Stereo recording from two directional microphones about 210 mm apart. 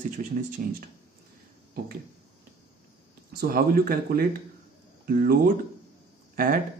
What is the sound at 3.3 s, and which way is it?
Speech, 45° right (ahead or behind).